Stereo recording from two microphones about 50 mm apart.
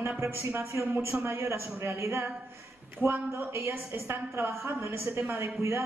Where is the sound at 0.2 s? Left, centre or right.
Right.